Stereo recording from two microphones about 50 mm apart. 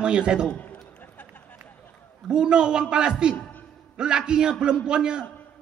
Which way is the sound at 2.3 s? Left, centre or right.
Centre.